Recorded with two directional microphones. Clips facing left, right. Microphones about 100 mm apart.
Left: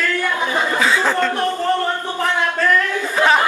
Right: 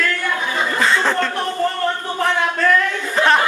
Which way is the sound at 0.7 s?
Centre (ahead or behind).